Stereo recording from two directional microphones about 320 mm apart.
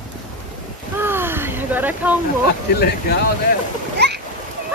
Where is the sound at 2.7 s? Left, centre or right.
Left.